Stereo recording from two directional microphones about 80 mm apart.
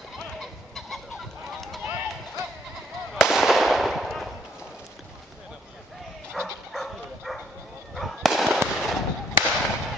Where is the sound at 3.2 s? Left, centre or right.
Centre.